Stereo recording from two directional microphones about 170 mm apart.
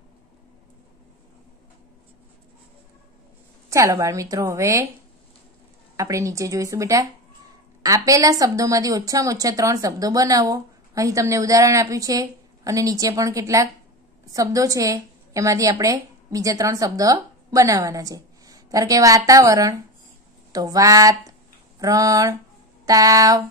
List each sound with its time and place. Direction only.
3.7 s a woman's voice: 20° right (ahead or behind)
5.9 s a woman's voice: 20° right (ahead or behind)